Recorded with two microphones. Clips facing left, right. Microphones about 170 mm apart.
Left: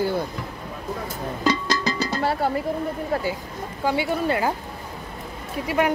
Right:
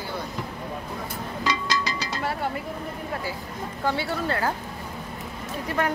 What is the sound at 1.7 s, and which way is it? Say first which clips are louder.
Music: left 4 dB; 50° left (ahead or behind).